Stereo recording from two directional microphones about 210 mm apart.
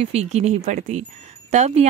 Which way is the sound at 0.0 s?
30° right (ahead or behind).